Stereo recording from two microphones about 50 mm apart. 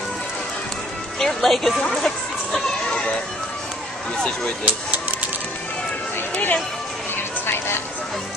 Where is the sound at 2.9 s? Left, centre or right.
Centre.